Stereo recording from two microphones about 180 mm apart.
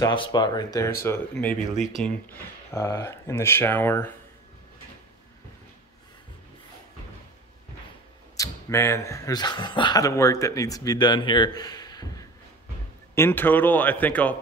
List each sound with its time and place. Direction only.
0.0 s speech: 25° left (ahead or behind); by 2.1 s centre (ahead or behind)
2.3 s speech: 15° left (ahead or behind)
8.4 s speech: 15° left (ahead or behind)